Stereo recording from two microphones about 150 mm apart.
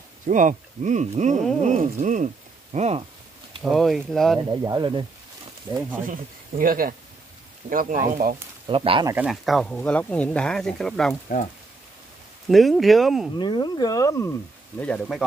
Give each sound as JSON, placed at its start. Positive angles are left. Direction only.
{"t": 0.3, "sound": "speech", "side_deg": -55}
{"t": 3.7, "sound": "speech", "side_deg": 0}
{"t": 4.5, "sound": "speech", "side_deg": -30}
{"t": 6.6, "sound": "speech", "side_deg": -70}
{"t": 8.6, "sound": "speech", "side_deg": -35}
{"t": 9.1, "sound": "speech", "side_deg": -5}
{"t": 12.4, "sound": "speech", "side_deg": 0}
{"t": 13.4, "sound": "speech", "side_deg": 30}
{"t": 14.8, "sound": "speech", "side_deg": 5}